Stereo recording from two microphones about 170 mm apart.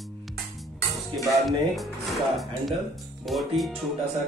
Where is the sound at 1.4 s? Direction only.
Centre (ahead or behind).